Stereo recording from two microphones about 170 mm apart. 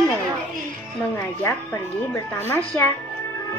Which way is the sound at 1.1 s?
15° left (ahead or behind).